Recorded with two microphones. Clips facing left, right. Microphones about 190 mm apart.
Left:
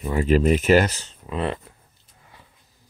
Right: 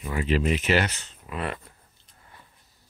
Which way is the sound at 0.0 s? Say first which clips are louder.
Left 6 dB; 40° left (ahead or behind).